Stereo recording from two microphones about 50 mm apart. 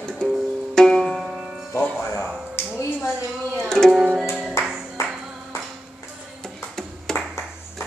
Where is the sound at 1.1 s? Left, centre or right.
Centre.